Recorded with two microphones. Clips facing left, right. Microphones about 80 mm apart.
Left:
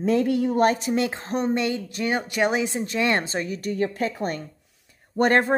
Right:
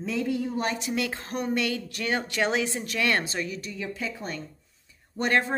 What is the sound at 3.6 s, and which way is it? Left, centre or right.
Speech, left.